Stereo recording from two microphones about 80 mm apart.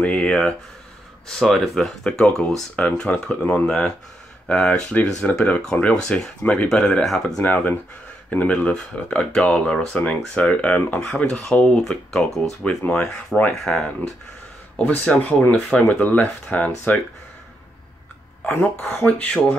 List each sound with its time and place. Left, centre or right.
0.0 s speech: centre
15.0 s speech: centre
18.5 s speech: left